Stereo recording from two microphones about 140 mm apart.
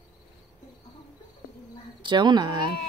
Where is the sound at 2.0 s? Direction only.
35° right (ahead or behind).